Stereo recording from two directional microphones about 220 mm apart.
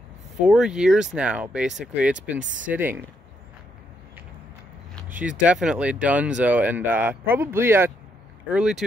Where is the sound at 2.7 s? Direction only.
10° right (ahead or behind).